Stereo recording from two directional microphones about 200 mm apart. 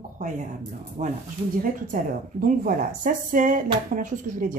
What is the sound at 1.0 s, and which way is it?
Speech, 35° right (ahead or behind).